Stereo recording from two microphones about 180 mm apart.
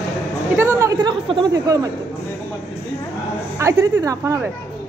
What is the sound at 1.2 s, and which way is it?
Speech, 25° right (ahead or behind).